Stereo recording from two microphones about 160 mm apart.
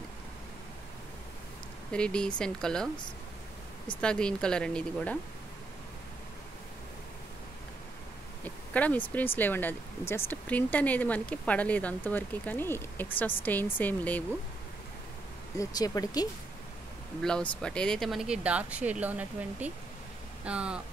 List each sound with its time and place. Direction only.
1.9 s speech: 5° left (ahead or behind)
4.0 s speech: 5° left (ahead or behind)
8.7 s speech: 10° left (ahead or behind)
15.5 s speech: 20° left (ahead or behind)
17.2 s speech: 5° left (ahead or behind)